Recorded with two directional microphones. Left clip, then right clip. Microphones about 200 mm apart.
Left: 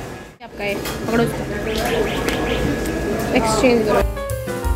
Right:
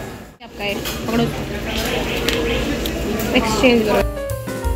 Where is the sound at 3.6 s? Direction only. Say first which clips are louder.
Right 2 dB; centre (ahead or behind).